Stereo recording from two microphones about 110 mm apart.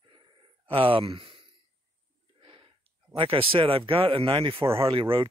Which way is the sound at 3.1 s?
55° right (ahead or behind).